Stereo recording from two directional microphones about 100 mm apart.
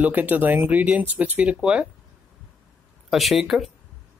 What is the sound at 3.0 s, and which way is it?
Speech, 5° right (ahead or behind).